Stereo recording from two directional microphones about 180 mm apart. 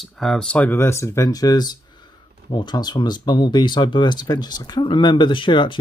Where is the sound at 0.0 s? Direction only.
Centre (ahead or behind).